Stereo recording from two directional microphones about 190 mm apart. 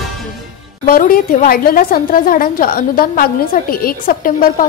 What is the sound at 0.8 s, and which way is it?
A woman's voice, 50° left (ahead or behind).